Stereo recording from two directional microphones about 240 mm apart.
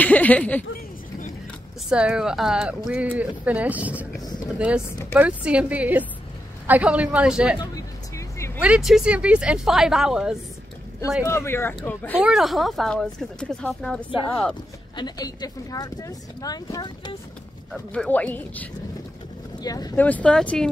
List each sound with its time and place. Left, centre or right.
0.0 s speech: centre
1.9 s speech: centre
8.5 s speech: centre
11.2 s speech: centre
15.0 s speech: centre
17.9 s speech: centre